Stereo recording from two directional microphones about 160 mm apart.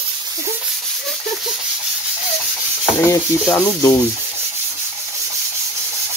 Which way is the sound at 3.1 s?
15° left (ahead or behind).